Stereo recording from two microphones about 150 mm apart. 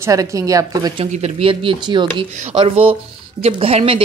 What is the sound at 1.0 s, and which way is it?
Speech, 40° right (ahead or behind).